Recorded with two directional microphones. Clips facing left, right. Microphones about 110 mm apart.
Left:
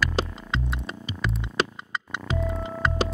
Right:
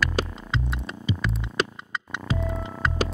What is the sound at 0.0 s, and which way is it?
Music, centre (ahead or behind).